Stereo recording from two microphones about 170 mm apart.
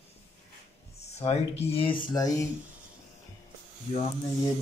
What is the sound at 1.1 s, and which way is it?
Speech, 40° left (ahead or behind).